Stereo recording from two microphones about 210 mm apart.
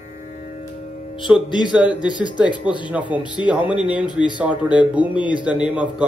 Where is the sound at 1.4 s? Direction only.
20° left (ahead or behind).